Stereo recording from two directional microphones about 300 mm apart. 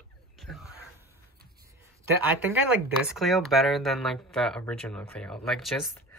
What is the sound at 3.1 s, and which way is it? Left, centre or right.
Speech, centre.